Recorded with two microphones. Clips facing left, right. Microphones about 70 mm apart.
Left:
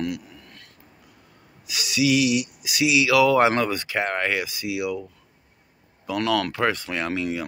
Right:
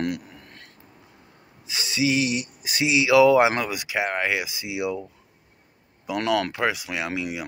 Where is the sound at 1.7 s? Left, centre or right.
Right.